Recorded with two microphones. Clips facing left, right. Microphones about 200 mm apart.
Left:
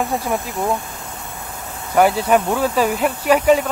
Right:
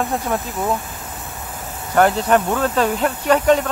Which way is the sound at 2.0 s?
10° left (ahead or behind).